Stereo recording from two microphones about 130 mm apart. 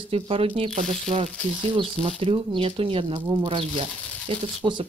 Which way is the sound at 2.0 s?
45° right (ahead or behind).